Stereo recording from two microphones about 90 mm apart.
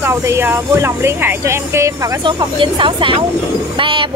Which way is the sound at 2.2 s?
65° right (ahead or behind).